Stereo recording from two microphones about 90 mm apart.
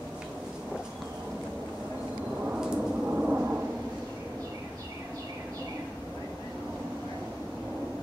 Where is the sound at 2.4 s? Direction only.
10° right (ahead or behind).